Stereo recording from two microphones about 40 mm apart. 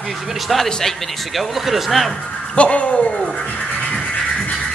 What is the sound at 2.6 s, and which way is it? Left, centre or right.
Speech, left.